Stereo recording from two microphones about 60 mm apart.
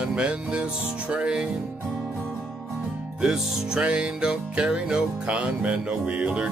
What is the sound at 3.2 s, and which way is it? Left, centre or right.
Music, centre.